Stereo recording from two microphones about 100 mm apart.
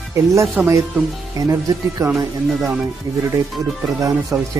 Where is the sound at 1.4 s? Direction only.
35° right (ahead or behind).